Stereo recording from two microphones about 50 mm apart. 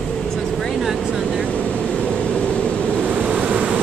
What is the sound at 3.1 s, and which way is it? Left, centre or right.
Vehicle, right.